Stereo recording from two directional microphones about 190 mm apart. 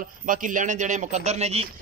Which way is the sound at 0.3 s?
45° right (ahead or behind).